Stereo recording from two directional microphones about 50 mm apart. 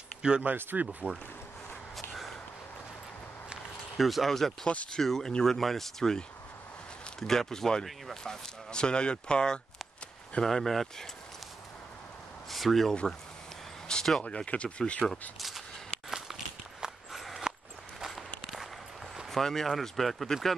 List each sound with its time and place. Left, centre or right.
0.2 s speech: centre
0.5 s speech: right
3.9 s speech: centre
10.4 s speech: centre
12.4 s a sound: centre
13.9 s a sound: centre
14.2 s speech: left
15.0 s speech: centre
16.1 s walk: centre
19.3 s speech: centre